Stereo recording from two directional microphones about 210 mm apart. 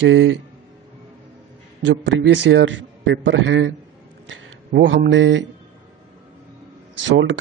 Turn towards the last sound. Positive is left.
turn(degrees=-60)  # may be behind; listen again after turning